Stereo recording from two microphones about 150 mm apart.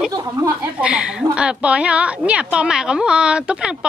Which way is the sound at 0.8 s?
5° right (ahead or behind).